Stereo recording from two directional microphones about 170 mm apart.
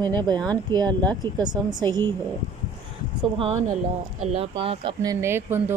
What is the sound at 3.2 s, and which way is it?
Speech, 30° right (ahead or behind).